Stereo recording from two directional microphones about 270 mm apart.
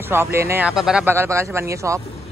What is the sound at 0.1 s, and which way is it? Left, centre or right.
Speech, centre.